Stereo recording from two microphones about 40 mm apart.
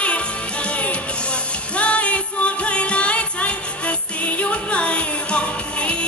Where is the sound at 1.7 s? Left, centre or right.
Left.